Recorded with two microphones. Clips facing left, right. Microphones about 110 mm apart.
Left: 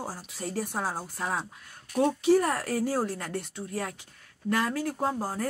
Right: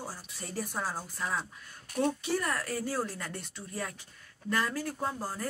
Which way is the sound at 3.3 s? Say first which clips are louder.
Left 7 dB; 65° left (ahead or behind).